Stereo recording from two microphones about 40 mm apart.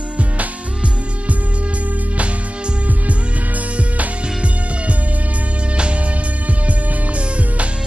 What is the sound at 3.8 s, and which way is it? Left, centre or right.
Music, right.